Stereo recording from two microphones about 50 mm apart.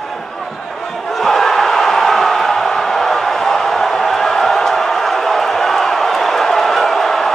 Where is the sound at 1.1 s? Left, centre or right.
Centre.